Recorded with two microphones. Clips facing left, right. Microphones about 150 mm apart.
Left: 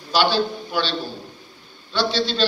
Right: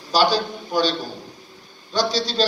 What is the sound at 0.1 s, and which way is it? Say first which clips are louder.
Speech: even; 40° right (ahead or behind).